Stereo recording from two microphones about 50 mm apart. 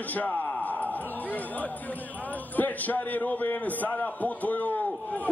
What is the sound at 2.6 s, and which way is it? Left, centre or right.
A man's voice, left.